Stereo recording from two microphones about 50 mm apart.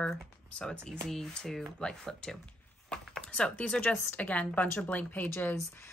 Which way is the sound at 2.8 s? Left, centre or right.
Centre.